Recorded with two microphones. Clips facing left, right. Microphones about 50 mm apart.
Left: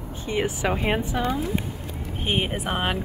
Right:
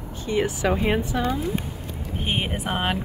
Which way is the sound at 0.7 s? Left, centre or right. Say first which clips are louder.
Right 3 dB; centre.